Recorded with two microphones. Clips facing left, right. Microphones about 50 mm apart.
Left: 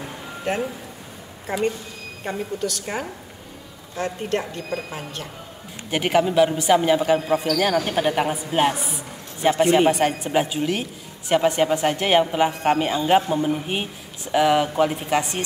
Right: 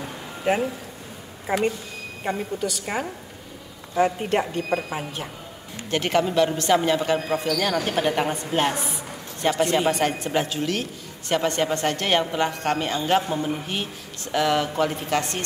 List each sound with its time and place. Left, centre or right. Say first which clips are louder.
0.5 s a woman's voice: right 3 dB; centre
2.2 s a woman's voice: even; centre
5.9 s a woman's voice: left 2 dB; centre